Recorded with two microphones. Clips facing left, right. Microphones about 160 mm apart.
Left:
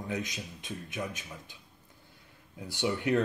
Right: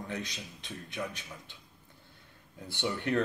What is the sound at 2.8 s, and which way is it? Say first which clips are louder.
Speech: left 2 dB; 10° left (ahead or behind).